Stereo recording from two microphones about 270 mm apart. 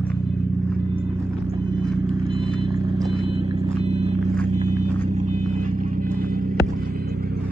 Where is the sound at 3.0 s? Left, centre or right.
Centre.